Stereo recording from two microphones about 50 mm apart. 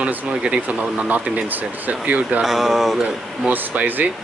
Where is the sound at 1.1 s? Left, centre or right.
Right.